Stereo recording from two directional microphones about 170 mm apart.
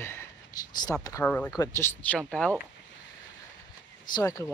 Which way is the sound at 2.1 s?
5° left (ahead or behind).